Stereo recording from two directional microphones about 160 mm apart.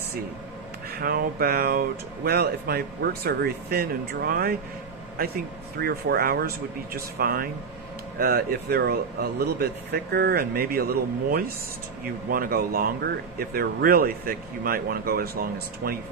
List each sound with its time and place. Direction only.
0.9 s speech: 70° right (ahead or behind)